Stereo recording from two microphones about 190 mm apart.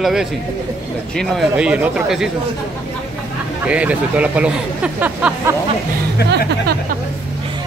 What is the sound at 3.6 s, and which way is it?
Speech, 5° right (ahead or behind).